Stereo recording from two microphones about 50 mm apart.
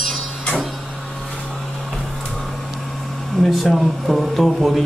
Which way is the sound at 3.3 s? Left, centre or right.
Centre.